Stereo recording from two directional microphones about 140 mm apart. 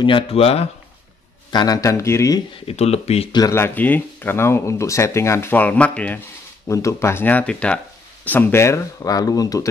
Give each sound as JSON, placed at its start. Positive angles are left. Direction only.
{"t": 0.0, "sound": "speech", "side_deg": 40}
{"t": 1.5, "sound": "speech", "side_deg": 30}
{"t": 2.6, "sound": "speech", "side_deg": 45}
{"t": 3.3, "sound": "speech", "side_deg": 20}
{"t": 6.7, "sound": "speech", "side_deg": 20}